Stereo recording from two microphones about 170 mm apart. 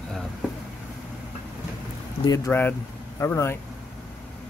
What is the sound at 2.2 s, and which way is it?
Speech, 20° left (ahead or behind).